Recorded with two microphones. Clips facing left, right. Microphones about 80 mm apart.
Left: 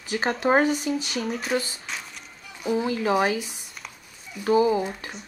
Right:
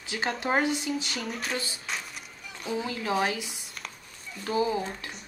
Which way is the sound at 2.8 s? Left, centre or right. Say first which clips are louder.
Left 6 dB; left.